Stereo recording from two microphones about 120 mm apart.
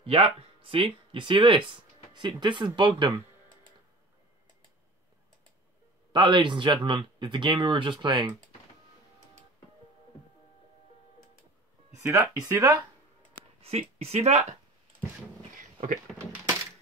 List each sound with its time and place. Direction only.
0.0 s speech: 50° right (ahead or behind)
6.1 s speech: 40° right (ahead or behind)
12.0 s speech: 25° right (ahead or behind)
13.6 s speech: 60° right (ahead or behind)
16.2 s speech: 25° right (ahead or behind)